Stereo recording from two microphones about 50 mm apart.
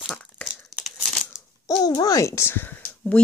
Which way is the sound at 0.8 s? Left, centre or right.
Centre.